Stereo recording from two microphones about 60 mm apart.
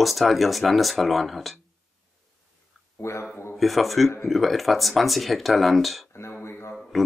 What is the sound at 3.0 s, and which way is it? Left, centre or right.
Speech, left.